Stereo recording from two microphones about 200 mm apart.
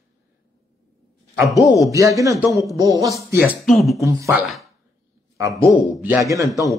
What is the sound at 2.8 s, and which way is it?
Speech, 15° right (ahead or behind).